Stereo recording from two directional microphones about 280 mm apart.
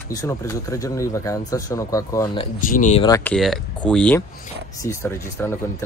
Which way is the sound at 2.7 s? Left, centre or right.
Left.